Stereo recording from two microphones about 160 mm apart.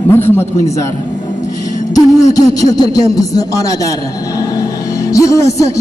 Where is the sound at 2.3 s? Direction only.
25° left (ahead or behind).